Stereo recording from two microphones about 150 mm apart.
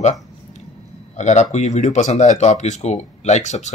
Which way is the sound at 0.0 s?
50° left (ahead or behind).